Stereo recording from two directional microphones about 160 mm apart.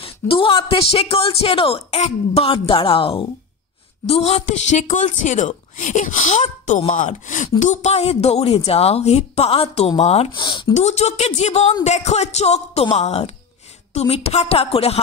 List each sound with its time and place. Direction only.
0.0 s a woman's voice: 35° left (ahead or behind)
10.4 s speech: 30° left (ahead or behind)
10.7 s a woman's voice: 45° left (ahead or behind)